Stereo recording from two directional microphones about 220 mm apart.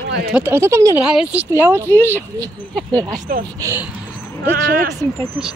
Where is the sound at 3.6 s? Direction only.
15° right (ahead or behind).